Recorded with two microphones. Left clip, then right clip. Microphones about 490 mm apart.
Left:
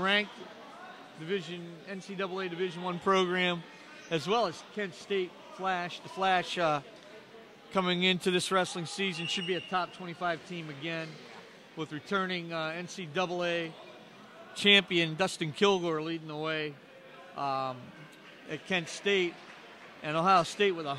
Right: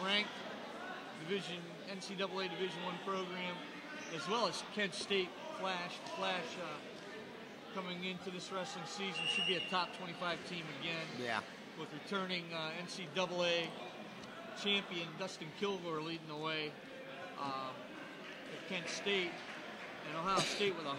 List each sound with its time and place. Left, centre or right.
0.0 s a sound: left
1.3 s speech: left
3.1 s speech: left
4.1 s speech: left
7.7 s speech: left
14.6 s speech: left
18.7 s speech: left